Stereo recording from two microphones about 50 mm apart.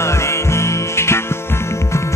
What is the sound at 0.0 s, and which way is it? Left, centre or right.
Music, left.